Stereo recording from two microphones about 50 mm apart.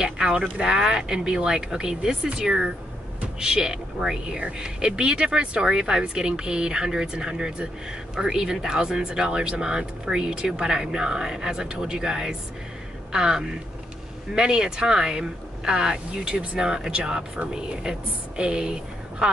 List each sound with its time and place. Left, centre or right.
0.0 s speech: centre